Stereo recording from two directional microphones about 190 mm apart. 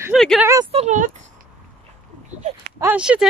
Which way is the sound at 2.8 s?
5° right (ahead or behind).